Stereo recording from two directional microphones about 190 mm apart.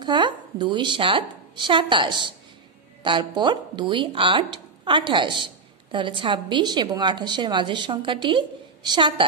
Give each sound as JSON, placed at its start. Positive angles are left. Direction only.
{"t": 0.0, "sound": "a woman's voice", "side_deg": -25}